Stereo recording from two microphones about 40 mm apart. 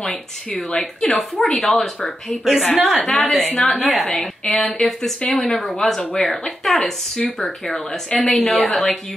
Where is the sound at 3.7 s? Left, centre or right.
Centre.